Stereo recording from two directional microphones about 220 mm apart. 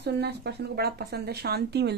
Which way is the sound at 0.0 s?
50° right (ahead or behind).